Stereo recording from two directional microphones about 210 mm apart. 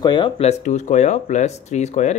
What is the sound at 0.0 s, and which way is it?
Speech, 20° left (ahead or behind).